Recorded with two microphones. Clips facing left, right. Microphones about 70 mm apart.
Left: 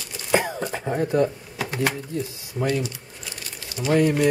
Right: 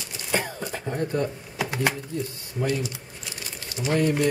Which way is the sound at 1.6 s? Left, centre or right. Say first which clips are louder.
Left 1 dB; centre.